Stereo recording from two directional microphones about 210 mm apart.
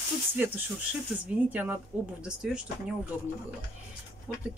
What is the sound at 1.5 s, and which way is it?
Speech, 5° right (ahead or behind).